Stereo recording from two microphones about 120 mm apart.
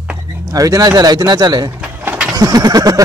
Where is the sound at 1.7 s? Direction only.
15° right (ahead or behind).